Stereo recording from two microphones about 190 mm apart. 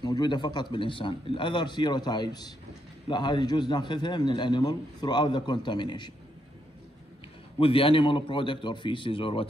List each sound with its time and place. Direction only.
0.0 s a man's voice: 20° left (ahead or behind)
7.5 s a man's voice: 30° left (ahead or behind)